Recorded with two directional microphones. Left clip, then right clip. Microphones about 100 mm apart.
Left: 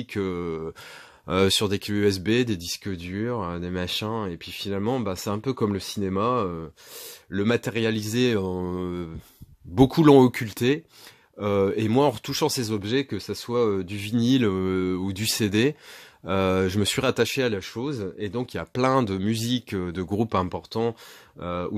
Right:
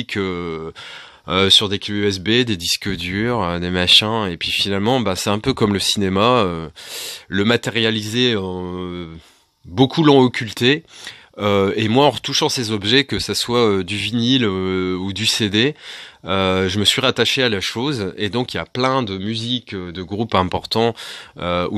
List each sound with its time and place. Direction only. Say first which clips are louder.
0.0 s speech: right 6 dB; 15° right (ahead or behind); by 2.2 s 10° left (ahead or behind)
2.2 s speech: right 6 dB; 10° right (ahead or behind)
2.6 s speech: right 12 dB; 35° right (ahead or behind)
7.4 s speech: right 7 dB; 10° right (ahead or behind); by 10.5 s 5° left (ahead or behind)
10.5 s speech: right 8 dB; 15° right (ahead or behind)
12.2 s speech: right 7 dB; centre (ahead or behind)
12.8 s speech: right 10 dB; 35° right (ahead or behind)
14.1 s speech: right 4 dB; centre (ahead or behind)
17.6 s speech: right 9 dB; 50° right (ahead or behind)
18.8 s speech: right 3 dB; 10° left (ahead or behind)
19.0 s speech: right 4 dB; 30° left (ahead or behind)
20.4 s speech: right 9 dB; 40° right (ahead or behind)